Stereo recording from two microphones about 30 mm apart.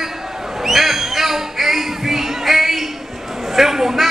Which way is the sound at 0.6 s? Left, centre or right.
Centre.